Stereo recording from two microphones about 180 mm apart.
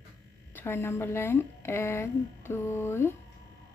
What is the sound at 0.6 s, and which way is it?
A woman's voice, 10° left (ahead or behind).